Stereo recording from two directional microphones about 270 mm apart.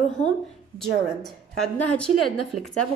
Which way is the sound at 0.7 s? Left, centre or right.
Centre.